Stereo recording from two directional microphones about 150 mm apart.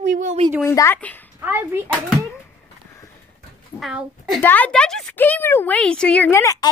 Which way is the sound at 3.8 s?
Centre (ahead or behind).